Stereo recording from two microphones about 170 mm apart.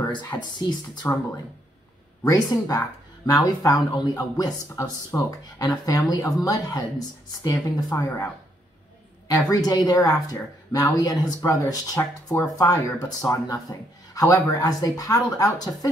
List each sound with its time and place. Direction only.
0.1 s speech: 25° left (ahead or behind)
2.2 s speech: 20° left (ahead or behind)
9.5 s speech: 20° left (ahead or behind)